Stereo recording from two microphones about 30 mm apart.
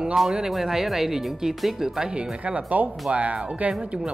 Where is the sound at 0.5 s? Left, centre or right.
Centre.